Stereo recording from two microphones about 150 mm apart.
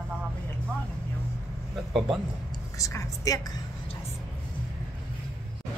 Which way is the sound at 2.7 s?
20° left (ahead or behind).